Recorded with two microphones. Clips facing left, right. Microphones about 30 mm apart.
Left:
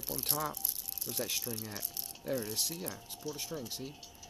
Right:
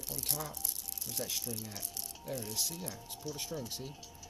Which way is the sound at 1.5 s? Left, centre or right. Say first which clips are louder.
Left 1 dB; centre.